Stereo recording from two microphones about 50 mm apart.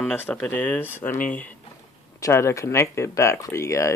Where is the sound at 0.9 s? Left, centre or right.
Left.